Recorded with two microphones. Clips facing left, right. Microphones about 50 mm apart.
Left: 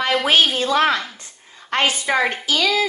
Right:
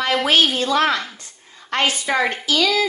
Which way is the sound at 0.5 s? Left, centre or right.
Left.